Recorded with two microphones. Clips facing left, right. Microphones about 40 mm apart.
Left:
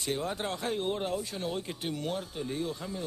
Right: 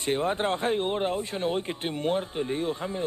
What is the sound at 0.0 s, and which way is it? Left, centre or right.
Speech, right.